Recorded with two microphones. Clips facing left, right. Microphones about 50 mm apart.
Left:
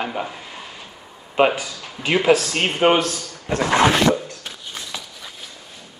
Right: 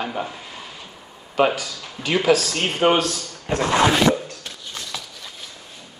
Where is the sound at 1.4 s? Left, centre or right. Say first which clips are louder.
Left 2 dB; left.